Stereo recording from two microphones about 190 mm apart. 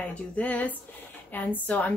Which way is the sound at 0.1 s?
10° left (ahead or behind).